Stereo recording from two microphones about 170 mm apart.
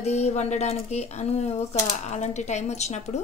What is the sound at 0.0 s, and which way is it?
A woman's voice, 40° left (ahead or behind).